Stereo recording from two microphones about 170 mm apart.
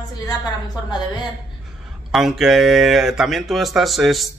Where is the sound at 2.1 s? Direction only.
Centre (ahead or behind).